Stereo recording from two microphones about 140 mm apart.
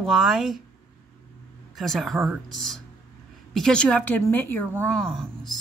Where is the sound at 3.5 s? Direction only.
5° left (ahead or behind).